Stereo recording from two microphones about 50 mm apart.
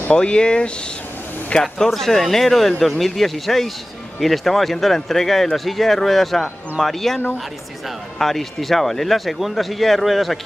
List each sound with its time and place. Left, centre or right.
0.1 s speech: centre
8.2 s speech: centre